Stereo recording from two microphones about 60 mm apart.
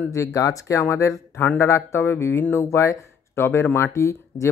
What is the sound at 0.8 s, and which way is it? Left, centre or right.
Speech, left.